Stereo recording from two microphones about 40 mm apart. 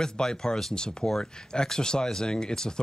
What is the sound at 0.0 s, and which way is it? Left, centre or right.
Speech, centre.